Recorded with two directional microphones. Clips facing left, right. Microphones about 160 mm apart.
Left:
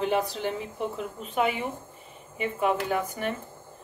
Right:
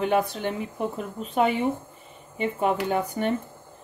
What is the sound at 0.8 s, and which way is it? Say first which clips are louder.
A woman's voice: right 3 dB; 40° right (ahead or behind).